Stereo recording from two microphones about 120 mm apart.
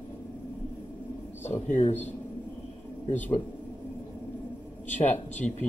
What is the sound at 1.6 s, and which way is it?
Speech, 70° left (ahead or behind).